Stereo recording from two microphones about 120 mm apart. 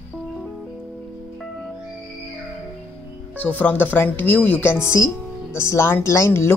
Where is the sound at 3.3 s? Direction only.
15° left (ahead or behind).